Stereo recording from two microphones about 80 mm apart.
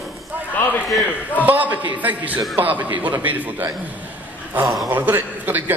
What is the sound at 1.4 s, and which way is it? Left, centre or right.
A man's voice, right.